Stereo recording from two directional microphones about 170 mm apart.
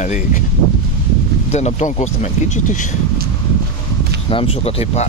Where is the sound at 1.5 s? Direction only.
40° left (ahead or behind).